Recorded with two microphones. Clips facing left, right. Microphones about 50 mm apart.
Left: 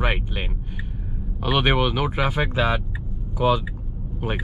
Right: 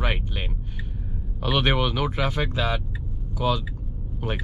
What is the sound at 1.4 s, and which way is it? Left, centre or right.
Speech, centre.